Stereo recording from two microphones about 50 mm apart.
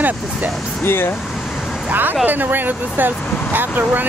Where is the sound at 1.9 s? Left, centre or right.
Right.